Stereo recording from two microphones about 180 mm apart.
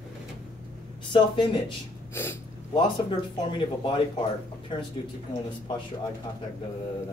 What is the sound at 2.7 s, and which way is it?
Speech, 30° left (ahead or behind).